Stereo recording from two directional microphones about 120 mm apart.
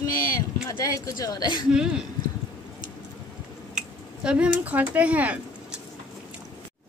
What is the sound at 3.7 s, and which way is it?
Speech, 5° right (ahead or behind).